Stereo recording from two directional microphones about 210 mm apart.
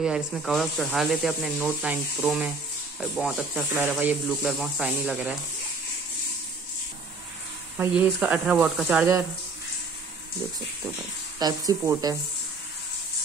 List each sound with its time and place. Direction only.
0.0 s speech: centre (ahead or behind)
8.0 s speech: 5° right (ahead or behind)
11.3 s speech: 20° right (ahead or behind)